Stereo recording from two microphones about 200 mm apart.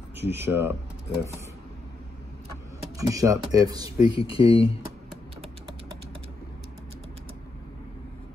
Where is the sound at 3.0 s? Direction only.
15° right (ahead or behind).